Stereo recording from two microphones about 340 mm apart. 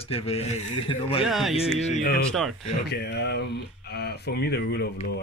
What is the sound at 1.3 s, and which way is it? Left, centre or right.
Speech, centre.